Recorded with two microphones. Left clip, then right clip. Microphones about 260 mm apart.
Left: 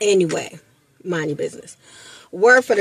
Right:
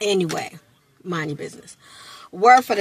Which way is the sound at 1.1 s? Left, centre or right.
Centre.